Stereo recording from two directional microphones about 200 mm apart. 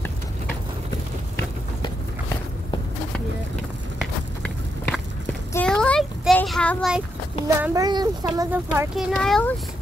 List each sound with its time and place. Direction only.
4.0 s walk: 5° left (ahead or behind)
5.5 s child singing: 5° left (ahead or behind)
7.4 s a child's voice: 15° right (ahead or behind)
8.5 s a child's voice: 5° right (ahead or behind)